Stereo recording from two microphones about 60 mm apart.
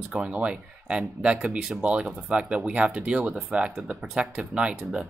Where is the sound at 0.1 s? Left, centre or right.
Centre.